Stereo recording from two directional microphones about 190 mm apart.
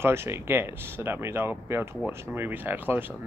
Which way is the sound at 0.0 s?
15° right (ahead or behind).